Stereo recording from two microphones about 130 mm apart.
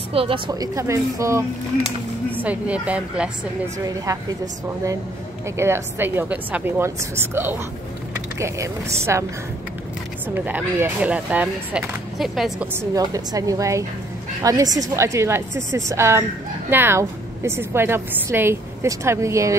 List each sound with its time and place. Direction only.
0.1 s a woman's voice: 45° right (ahead or behind)
0.5 s a woman's voice: 25° right (ahead or behind)
2.4 s a woman's voice: 10° right (ahead or behind)
3.8 s a woman's voice: 25° right (ahead or behind)
5.6 s a woman's voice: 20° right (ahead or behind)
10.2 s a woman's voice: 15° right (ahead or behind)
12.9 s a woman's voice: 25° right (ahead or behind)